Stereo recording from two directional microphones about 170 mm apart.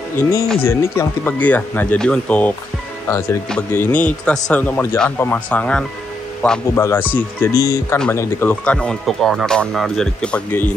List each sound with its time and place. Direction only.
0.1 s speech: 15° left (ahead or behind)
3.1 s speech: 20° left (ahead or behind)